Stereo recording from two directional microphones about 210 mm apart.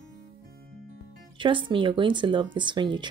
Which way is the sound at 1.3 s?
25° right (ahead or behind).